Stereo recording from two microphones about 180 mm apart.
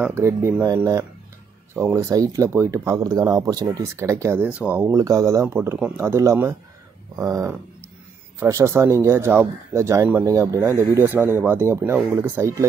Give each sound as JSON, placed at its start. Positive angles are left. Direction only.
{"t": 0.0, "sound": "speech", "side_deg": -15}